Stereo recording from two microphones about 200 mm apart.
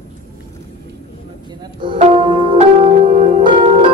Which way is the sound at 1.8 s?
25° right (ahead or behind).